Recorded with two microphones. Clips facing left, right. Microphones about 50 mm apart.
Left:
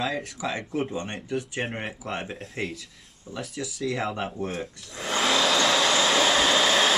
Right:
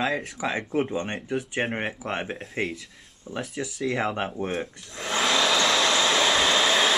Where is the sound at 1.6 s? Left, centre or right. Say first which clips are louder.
Right 3 dB; right.